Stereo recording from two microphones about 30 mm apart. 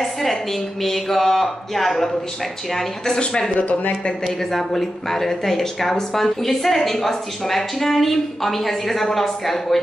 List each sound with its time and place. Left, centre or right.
0.0 s a sound: centre
0.8 s a woman's voice: centre
3.5 s speech: left
4.5 s a woman's voice: centre